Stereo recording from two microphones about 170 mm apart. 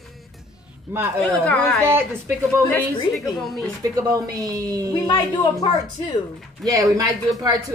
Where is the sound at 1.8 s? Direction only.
15° right (ahead or behind).